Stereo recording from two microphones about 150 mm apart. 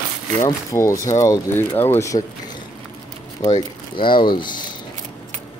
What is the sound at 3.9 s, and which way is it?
Speech, 30° left (ahead or behind).